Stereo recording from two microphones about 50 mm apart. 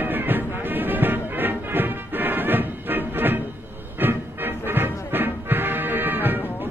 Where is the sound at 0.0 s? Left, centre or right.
Right.